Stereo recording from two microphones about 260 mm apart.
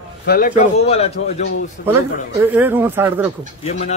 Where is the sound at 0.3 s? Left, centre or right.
Left.